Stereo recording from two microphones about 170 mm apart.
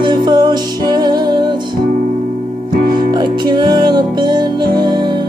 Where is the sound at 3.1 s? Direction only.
25° right (ahead or behind).